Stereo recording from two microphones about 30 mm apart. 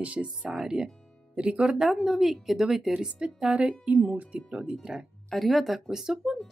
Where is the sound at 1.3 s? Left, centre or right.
Right.